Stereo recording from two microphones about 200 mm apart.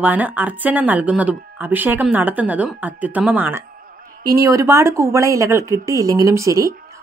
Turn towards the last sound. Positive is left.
turn(degrees=-15)  # may be behind; listen again after turning